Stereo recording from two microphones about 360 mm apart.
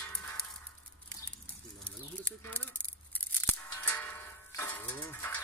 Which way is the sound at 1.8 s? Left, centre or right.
Centre.